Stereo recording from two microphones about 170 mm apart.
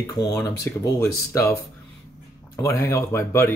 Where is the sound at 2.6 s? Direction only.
15° left (ahead or behind).